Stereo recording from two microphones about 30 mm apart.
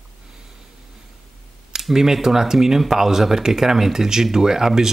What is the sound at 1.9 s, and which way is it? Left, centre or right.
Speech, centre.